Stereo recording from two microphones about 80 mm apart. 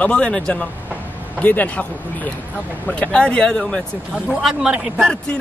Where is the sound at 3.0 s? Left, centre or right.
Centre.